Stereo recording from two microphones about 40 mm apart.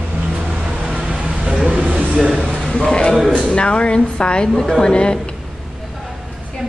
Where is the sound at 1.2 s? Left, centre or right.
Right.